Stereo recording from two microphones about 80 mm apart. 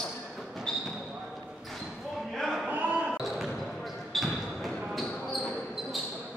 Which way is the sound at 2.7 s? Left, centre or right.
Centre.